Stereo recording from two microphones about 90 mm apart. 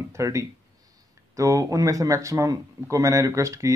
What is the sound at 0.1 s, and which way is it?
Speech, 35° right (ahead or behind).